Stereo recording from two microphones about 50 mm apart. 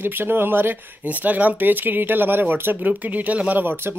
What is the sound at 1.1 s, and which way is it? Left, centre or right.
Speech, right.